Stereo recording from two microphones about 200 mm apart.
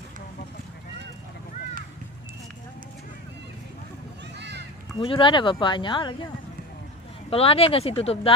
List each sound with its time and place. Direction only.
4.4 s a sound: 60° right (ahead or behind)
5.0 s speech: 25° left (ahead or behind)
7.2 s speech: 30° left (ahead or behind)